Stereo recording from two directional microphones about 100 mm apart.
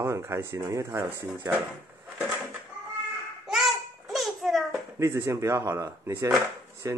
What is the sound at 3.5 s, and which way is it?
Babbling, centre (ahead or behind).